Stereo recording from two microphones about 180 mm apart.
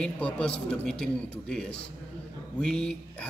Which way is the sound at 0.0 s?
5° left (ahead or behind).